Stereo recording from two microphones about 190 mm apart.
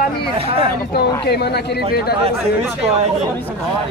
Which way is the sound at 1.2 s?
60° left (ahead or behind).